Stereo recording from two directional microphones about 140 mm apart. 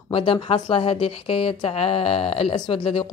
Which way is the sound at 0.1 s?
40° left (ahead or behind).